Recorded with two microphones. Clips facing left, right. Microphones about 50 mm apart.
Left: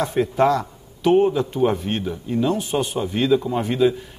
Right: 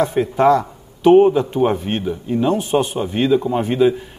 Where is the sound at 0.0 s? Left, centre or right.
Centre.